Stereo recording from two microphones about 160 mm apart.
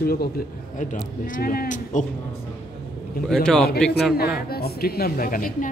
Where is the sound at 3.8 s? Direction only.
5° left (ahead or behind).